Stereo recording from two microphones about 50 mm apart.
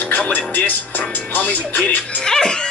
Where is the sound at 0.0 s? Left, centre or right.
Left.